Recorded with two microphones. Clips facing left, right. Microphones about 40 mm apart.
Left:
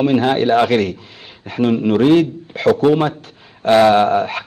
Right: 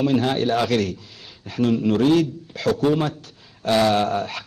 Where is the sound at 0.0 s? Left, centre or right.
Left.